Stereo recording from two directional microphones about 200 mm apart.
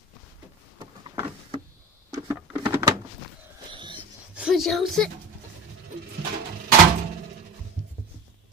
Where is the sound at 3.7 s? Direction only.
25° right (ahead or behind).